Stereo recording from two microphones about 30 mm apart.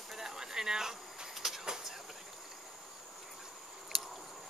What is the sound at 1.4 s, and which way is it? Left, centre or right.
Vehicle, centre.